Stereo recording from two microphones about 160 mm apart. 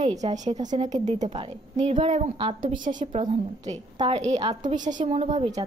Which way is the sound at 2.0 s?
35° right (ahead or behind).